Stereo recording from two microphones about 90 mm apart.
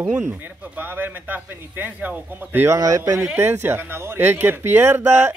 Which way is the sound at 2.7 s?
35° right (ahead or behind).